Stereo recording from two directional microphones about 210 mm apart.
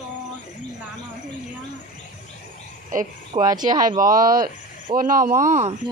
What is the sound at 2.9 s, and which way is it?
Speech, 40° right (ahead or behind).